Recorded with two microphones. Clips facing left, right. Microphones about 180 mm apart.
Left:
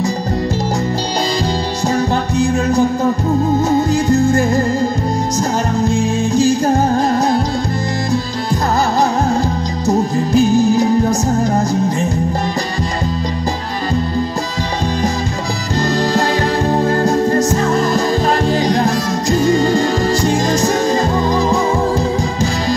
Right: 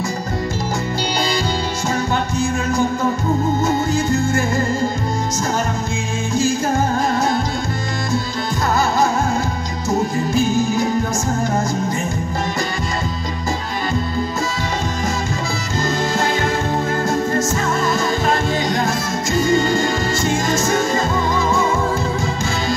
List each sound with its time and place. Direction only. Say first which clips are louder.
2.0 s music: left 5 dB; 35° left (ahead or behind)
9.8 s music: left 4 dB; 35° left (ahead or behind)
16.7 s music: left 5 dB; 35° left (ahead or behind)